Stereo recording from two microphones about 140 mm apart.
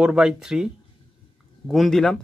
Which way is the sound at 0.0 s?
5° right (ahead or behind).